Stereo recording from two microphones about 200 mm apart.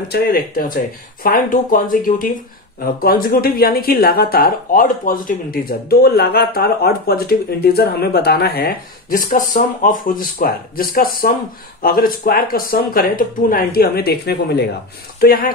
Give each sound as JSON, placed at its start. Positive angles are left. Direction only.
{"t": 0.1, "sound": "speech", "side_deg": 45}